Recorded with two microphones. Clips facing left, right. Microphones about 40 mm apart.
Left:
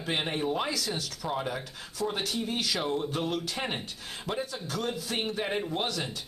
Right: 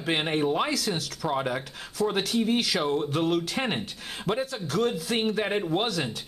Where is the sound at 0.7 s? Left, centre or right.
Centre.